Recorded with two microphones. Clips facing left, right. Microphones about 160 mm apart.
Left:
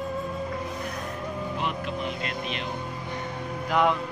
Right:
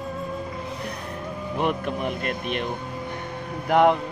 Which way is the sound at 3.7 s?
60° right (ahead or behind).